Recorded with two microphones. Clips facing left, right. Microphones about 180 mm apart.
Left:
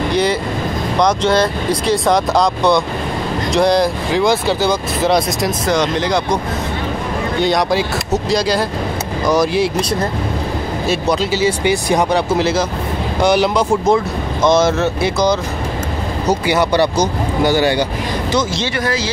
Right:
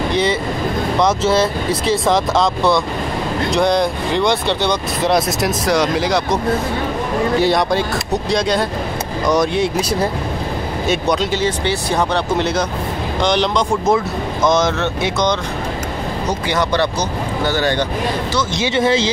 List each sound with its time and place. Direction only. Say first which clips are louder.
0.1 s speech: left 1 dB; centre (ahead or behind)
12.4 s speech: left 2 dB; centre (ahead or behind)
18.8 s speech: right 6 dB; 25° right (ahead or behind)